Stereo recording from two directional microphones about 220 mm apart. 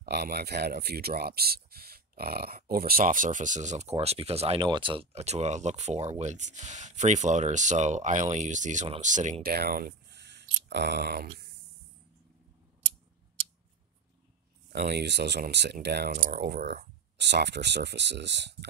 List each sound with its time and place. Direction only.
0.0 s speech: 45° right (ahead or behind)
14.7 s speech: 50° right (ahead or behind)